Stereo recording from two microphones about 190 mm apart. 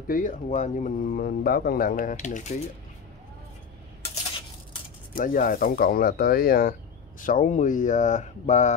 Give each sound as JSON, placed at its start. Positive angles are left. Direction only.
{"t": 0.1, "sound": "speech", "side_deg": 45}
{"t": 5.1, "sound": "speech", "side_deg": 45}